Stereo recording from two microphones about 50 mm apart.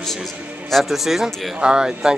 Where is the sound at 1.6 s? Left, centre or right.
Centre.